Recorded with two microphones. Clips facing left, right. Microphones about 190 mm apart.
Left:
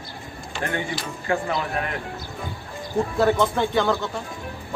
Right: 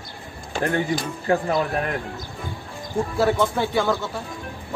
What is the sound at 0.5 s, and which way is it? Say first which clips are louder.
Speech: right 5 dB; 45° right (ahead or behind).